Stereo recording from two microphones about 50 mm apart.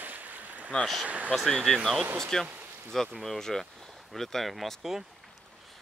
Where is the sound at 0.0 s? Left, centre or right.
Right.